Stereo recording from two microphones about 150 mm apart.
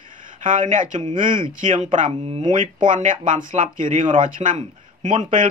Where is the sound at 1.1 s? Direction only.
30° right (ahead or behind).